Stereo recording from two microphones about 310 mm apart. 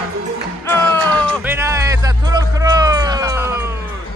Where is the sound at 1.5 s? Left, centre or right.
Centre.